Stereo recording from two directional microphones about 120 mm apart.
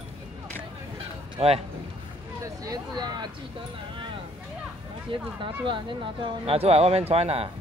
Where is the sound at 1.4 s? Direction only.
55° right (ahead or behind).